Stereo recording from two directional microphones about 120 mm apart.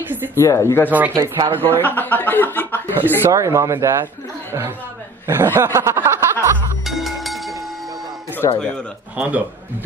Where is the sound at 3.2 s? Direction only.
25° right (ahead or behind).